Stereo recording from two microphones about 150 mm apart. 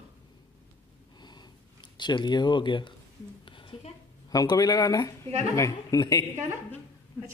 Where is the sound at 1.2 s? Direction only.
30° left (ahead or behind).